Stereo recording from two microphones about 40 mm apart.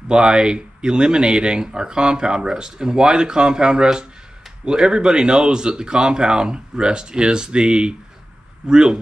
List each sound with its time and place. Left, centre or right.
0.1 s speech: right